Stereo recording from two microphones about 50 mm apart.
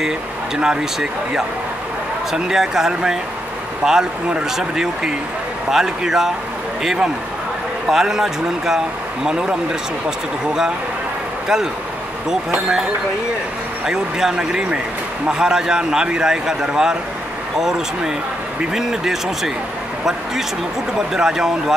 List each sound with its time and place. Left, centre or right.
0.6 s a man's voice: centre
4.6 s a man's voice: centre
13.8 s a man's voice: centre
21.1 s a man's voice: centre